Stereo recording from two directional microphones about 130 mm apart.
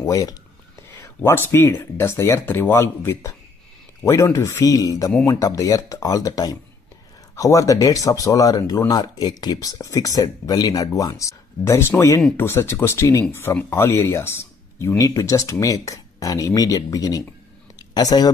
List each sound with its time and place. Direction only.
0.0 s speech: 30° left (ahead or behind)
1.0 s a sound: 20° left (ahead or behind)
1.5 s speech: 15° left (ahead or behind)